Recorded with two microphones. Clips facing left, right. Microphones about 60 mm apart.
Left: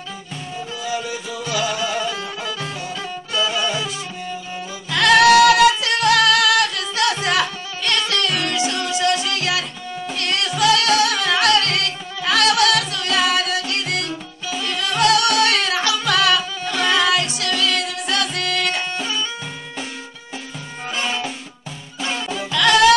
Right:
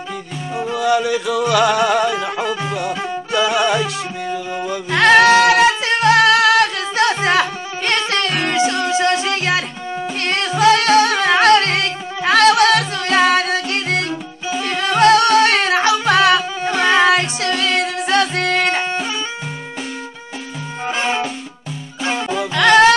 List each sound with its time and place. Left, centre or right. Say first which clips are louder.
0.6 s music: right 10 dB; right
2.9 s music: right 6 dB; right
3.3 s music: right 6 dB; right
4.9 s singing: right 2 dB; right
10.2 s music: right 4 dB; right
20.8 s music: right 5 dB; right